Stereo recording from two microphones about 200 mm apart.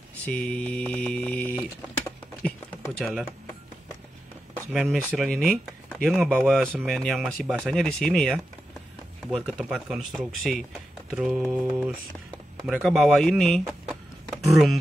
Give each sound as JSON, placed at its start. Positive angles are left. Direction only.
{"t": 0.2, "sound": "speech", "side_deg": 5}
{"t": 2.4, "sound": "a sound", "side_deg": 5}
{"t": 4.7, "sound": "speech", "side_deg": 0}